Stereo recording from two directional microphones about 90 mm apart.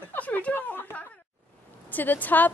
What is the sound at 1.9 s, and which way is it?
Speech, 20° left (ahead or behind).